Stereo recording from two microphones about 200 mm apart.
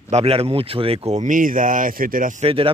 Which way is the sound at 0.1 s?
30° right (ahead or behind).